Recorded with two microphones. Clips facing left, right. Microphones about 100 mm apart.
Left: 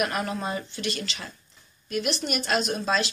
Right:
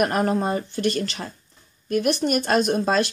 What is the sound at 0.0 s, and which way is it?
Speech, 45° right (ahead or behind).